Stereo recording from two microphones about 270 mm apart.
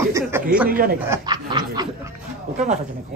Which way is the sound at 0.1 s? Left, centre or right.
Centre.